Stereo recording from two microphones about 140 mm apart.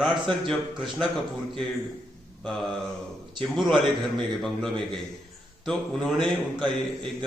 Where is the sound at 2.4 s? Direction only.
Centre (ahead or behind).